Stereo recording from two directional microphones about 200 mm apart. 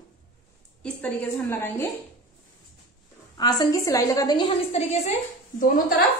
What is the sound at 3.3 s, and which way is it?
A woman's voice, 20° left (ahead or behind).